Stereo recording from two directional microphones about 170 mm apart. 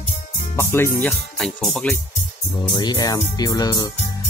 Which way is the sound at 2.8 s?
25° left (ahead or behind).